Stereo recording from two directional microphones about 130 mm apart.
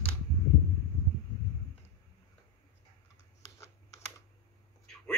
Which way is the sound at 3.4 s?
25° left (ahead or behind).